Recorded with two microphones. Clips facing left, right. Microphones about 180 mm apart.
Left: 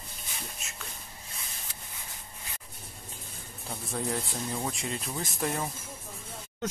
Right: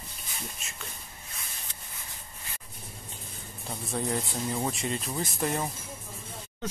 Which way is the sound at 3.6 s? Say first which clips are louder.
Right 2 dB; centre (ahead or behind).